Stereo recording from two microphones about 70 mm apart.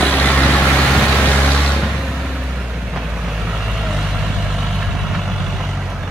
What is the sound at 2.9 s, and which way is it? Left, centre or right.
Vehicle, centre.